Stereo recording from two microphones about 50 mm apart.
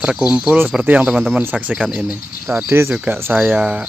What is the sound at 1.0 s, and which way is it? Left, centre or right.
Speech, centre.